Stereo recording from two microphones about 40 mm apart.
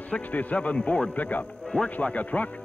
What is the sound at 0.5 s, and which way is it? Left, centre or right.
Speech, left.